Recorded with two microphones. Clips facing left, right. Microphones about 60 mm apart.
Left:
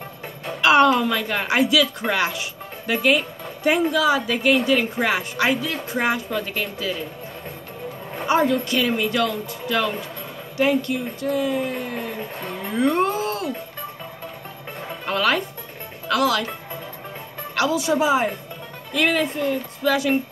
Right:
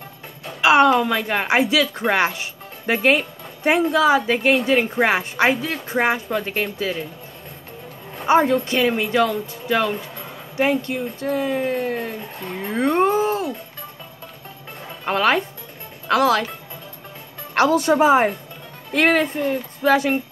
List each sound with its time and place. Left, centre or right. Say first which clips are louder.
0.6 s a sound: right 1 dB; centre
0.9 s speech: right 2 dB; centre
8.3 s speech: right 3 dB; right
12.7 s a sound: right 2 dB; right
15.0 s speech: right 3 dB; right
17.6 s speech: right 4 dB; right